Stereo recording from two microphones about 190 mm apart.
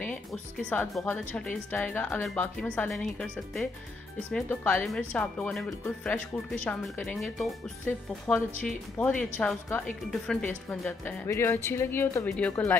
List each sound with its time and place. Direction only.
0.0 s speech: 5° left (ahead or behind)
4.3 s speech: 5° left (ahead or behind)